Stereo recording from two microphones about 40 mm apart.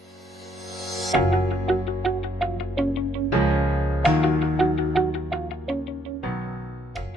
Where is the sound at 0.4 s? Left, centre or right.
Centre.